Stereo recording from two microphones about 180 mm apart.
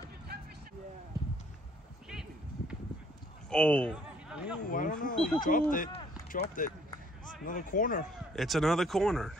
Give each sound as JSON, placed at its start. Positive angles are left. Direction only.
{"t": 3.4, "sound": "speech", "side_deg": 5}
{"t": 3.9, "sound": "a sound", "side_deg": -5}
{"t": 4.6, "sound": "speech", "side_deg": 50}
{"t": 5.1, "sound": "speech", "side_deg": 5}
{"t": 5.4, "sound": "speech", "side_deg": 50}
{"t": 8.4, "sound": "speech", "side_deg": 0}